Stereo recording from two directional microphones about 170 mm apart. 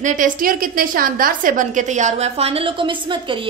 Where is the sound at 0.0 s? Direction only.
50° right (ahead or behind).